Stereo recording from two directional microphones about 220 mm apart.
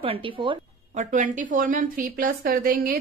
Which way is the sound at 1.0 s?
35° right (ahead or behind).